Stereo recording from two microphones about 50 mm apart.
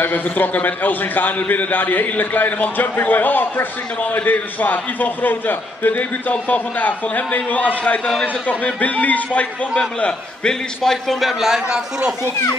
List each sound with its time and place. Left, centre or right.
0.0 s a man's voice: left
9.9 s a man's voice: centre
10.8 s a man's voice: centre